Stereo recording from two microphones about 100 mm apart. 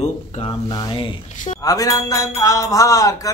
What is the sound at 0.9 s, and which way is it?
Speech, 60° left (ahead or behind).